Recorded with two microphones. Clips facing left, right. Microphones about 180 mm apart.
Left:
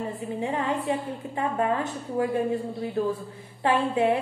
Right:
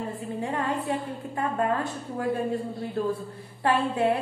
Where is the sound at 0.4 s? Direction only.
15° left (ahead or behind).